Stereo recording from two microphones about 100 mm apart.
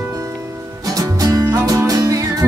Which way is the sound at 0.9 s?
35° right (ahead or behind).